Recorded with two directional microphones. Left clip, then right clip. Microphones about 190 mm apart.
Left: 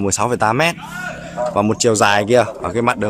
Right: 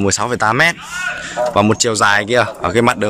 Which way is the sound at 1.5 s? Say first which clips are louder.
Even; 10° left (ahead or behind).